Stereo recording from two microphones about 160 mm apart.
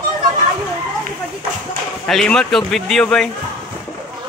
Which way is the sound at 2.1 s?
5° left (ahead or behind).